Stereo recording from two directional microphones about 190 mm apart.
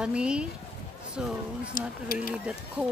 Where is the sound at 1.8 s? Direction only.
45° left (ahead or behind).